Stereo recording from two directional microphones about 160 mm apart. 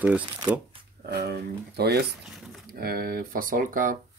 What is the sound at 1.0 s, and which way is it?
Speech, 85° right.